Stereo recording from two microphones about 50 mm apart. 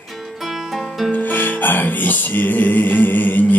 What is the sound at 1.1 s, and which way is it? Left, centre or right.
Music, left.